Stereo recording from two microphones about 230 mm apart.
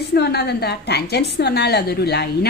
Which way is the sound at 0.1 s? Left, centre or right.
Left.